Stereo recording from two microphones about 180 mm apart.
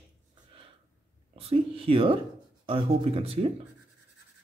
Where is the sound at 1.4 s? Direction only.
35° right (ahead or behind).